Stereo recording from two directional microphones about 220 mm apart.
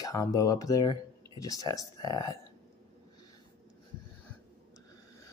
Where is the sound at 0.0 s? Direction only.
15° left (ahead or behind).